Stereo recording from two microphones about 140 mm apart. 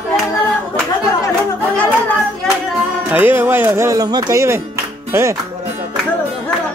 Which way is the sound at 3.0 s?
15° right (ahead or behind).